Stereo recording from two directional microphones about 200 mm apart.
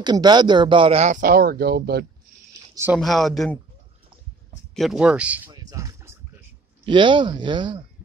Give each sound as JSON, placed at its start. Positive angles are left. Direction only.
{"t": 0.0, "sound": "speech", "side_deg": -20}
{"t": 2.7, "sound": "speech", "side_deg": -10}
{"t": 3.0, "sound": "speech", "side_deg": 0}
{"t": 4.7, "sound": "speech", "side_deg": 0}
{"t": 5.5, "sound": "music", "side_deg": -15}
{"t": 6.9, "sound": "speech", "side_deg": -25}